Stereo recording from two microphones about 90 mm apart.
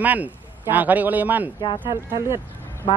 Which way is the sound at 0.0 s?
20° right (ahead or behind).